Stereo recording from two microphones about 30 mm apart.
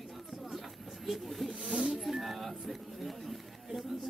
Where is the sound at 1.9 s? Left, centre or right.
Centre.